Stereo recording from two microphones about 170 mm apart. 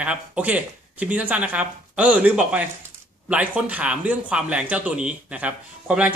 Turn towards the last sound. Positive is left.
turn(degrees=-10)  # may be behind; listen again after turning